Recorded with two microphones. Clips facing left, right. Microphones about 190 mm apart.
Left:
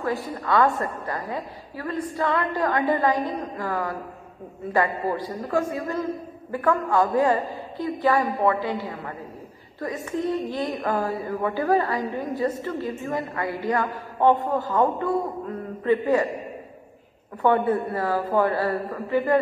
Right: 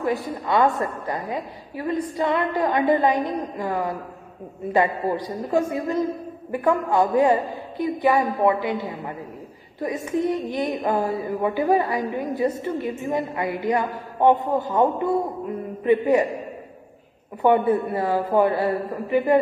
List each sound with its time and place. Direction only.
0.0 s a woman's voice: 20° right (ahead or behind)
17.4 s speech: 15° right (ahead or behind)